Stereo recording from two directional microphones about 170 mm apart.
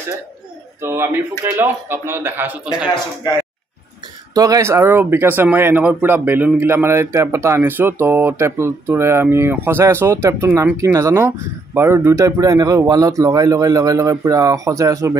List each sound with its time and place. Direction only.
0.8 s speech: 15° right (ahead or behind)
4.3 s speech: 20° right (ahead or behind)